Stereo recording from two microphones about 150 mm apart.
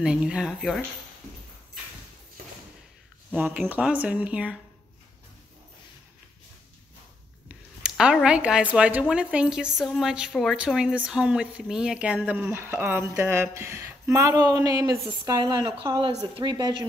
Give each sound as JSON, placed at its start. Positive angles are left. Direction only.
{"t": 0.0, "sound": "a woman's voice", "side_deg": -5}
{"t": 3.3, "sound": "speech", "side_deg": -10}
{"t": 7.4, "sound": "a woman's voice", "side_deg": -5}